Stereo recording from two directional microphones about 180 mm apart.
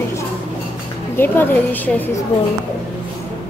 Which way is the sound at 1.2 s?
10° left (ahead or behind).